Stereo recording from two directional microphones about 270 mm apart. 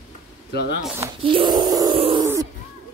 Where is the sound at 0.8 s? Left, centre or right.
Centre.